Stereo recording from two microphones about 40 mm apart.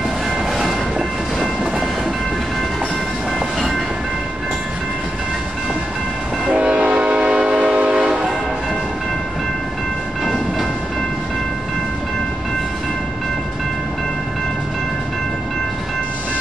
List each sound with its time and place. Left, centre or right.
0.6 s train: centre
6.4 s train: right